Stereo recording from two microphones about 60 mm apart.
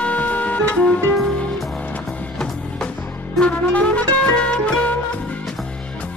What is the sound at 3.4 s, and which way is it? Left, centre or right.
Music, left.